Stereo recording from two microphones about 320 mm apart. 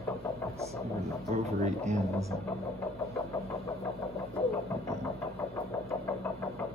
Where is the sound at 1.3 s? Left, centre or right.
Centre.